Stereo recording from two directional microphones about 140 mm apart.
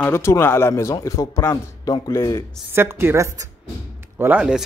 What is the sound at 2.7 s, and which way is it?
Speech, 15° right (ahead or behind).